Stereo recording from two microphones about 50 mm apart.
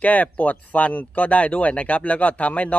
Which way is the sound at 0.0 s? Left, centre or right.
Left.